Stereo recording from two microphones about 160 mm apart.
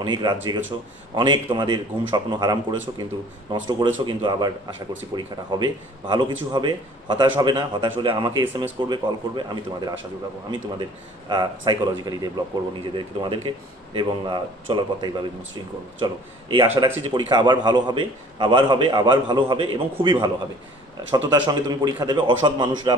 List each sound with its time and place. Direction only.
0.0 s a man's voice: 30° right (ahead or behind)
16.7 s speech: 15° right (ahead or behind)
17.0 s a man's voice: 30° right (ahead or behind)
21.3 s a man's voice: 25° right (ahead or behind)